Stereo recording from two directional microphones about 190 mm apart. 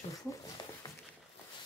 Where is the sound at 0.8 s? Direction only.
20° left (ahead or behind).